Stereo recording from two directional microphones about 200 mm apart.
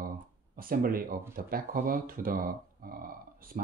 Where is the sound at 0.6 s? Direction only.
45° right (ahead or behind).